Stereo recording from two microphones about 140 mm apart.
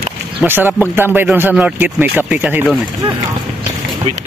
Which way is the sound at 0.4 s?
15° right (ahead or behind).